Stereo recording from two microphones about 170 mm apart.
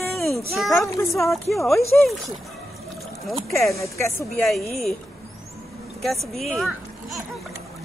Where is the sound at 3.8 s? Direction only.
15° left (ahead or behind).